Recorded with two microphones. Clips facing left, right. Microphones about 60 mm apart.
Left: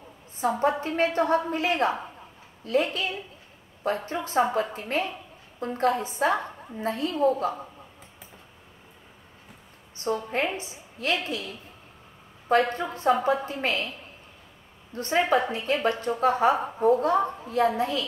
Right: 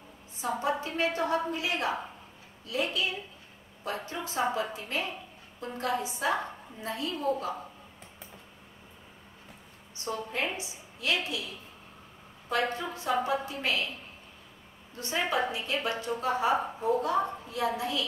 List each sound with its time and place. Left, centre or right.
0.4 s a woman's voice: left
9.9 s a woman's voice: left
12.4 s a woman's voice: left
14.9 s a woman's voice: left